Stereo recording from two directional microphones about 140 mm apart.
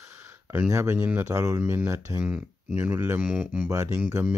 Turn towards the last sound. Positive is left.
turn(degrees=-15)  # may be behind; listen again after turning